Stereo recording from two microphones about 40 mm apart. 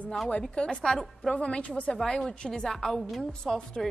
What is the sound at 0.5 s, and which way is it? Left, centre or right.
A woman's voice, centre.